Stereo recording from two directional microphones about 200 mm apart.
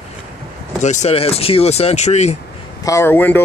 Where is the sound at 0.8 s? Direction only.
35° left (ahead or behind).